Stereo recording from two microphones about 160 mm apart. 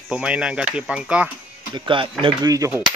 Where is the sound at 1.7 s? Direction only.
30° right (ahead or behind).